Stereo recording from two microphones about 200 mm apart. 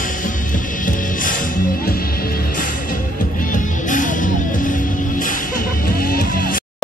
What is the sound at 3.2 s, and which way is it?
Music, 40° left (ahead or behind).